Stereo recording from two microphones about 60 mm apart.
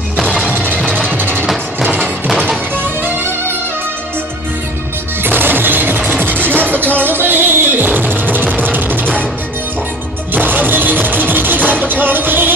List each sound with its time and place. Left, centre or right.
0.5 s music: right
1.8 s music: right
5.2 s music: right
10.3 s music: right